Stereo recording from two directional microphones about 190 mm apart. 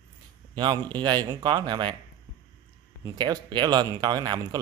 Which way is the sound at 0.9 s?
25° right (ahead or behind).